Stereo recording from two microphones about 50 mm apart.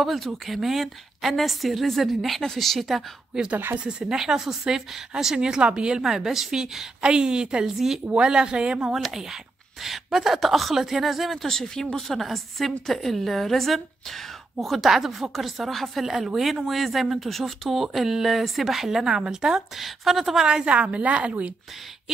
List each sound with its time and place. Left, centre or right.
0.0 s speech: centre
3.3 s a woman's voice: centre
6.0 s a woman's voice: centre
7.7 s speech: centre
8.1 s a woman's voice: centre
8.8 s speech: centre
19.8 s speech: centre
20.4 s a woman's voice: centre